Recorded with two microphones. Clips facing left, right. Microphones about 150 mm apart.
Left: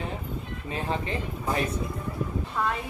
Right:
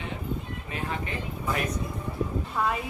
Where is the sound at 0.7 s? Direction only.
30° left (ahead or behind).